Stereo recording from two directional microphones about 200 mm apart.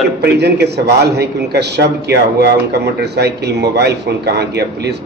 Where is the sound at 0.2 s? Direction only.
55° right (ahead or behind).